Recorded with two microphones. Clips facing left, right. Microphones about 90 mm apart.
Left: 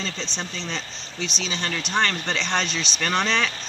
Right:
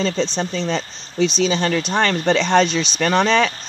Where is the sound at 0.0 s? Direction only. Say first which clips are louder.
Right 11 dB; 50° right (ahead or behind).